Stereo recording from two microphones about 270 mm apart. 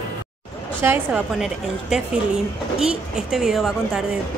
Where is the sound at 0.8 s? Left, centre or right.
Centre.